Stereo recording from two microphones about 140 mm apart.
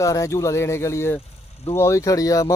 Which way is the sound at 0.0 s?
25° left (ahead or behind).